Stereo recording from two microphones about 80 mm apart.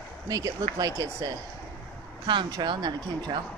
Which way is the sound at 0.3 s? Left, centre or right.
Right.